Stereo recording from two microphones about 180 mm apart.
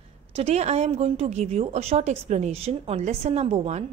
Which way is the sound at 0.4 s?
35° right (ahead or behind).